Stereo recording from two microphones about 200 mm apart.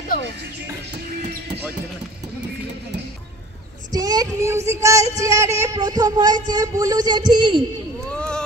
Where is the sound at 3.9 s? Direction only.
20° right (ahead or behind).